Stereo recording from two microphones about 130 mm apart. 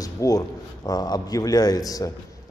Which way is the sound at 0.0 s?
25° left (ahead or behind).